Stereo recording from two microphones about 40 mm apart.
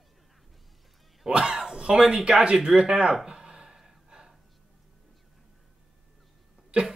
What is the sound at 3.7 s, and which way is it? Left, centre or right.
Gasp, centre.